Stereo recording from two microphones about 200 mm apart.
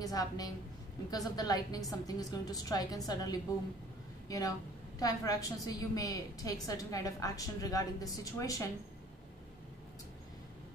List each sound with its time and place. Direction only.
0.0 s a woman's voice: 20° left (ahead or behind)